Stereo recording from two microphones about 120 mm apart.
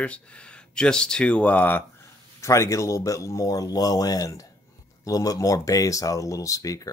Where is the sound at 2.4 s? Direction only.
25° left (ahead or behind).